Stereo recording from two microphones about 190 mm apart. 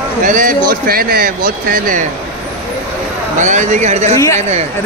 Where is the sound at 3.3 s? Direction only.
40° right (ahead or behind).